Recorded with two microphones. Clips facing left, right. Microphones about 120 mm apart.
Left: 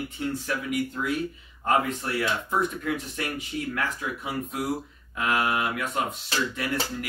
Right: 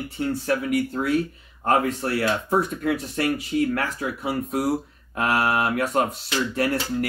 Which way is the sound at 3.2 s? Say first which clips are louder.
Right 9 dB; 50° right (ahead or behind).